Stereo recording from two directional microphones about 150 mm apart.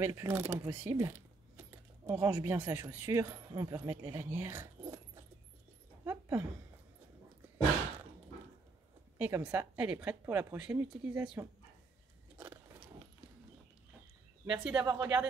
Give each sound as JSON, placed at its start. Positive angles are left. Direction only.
{"t": 0.0, "sound": "speech", "side_deg": -15}
{"t": 4.8, "sound": "keys jangling", "side_deg": -25}
{"t": 6.0, "sound": "a sound", "side_deg": -10}
{"t": 9.2, "sound": "speech", "side_deg": -10}
{"t": 14.4, "sound": "speech", "side_deg": -10}